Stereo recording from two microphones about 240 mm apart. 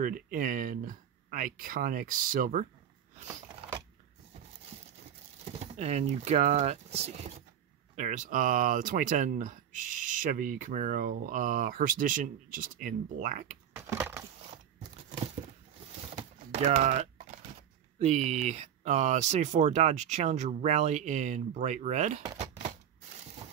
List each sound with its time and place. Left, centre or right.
0.0 s speech: right
5.4 s speech: right
13.8 s crushing: centre
16.2 s typing: right
17.9 s speech: right
22.2 s typewriter: right